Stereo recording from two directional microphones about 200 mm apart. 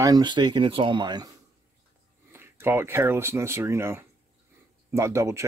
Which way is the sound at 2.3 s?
10° right (ahead or behind).